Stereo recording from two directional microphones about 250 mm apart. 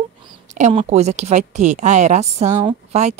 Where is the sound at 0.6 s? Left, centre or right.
Right.